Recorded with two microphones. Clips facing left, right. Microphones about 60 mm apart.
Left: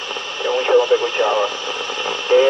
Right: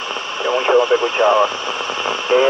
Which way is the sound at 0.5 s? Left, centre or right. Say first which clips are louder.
Even; right.